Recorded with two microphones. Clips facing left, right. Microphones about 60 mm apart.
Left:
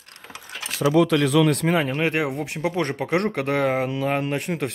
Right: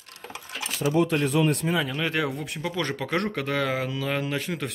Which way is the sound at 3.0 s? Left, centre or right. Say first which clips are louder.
Left 4 dB; left.